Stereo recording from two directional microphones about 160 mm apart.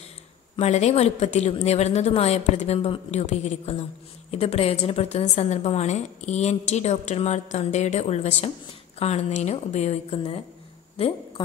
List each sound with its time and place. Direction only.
0.6 s a woman's voice: 45° left (ahead or behind)